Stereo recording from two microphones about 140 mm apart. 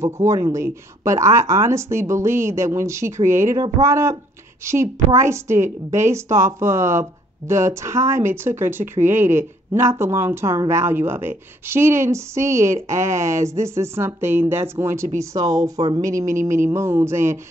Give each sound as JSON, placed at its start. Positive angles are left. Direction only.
{"t": 0.0, "sound": "a woman's voice", "side_deg": -20}